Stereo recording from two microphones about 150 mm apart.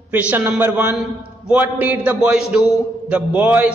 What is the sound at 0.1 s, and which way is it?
A man's voice, 10° right (ahead or behind).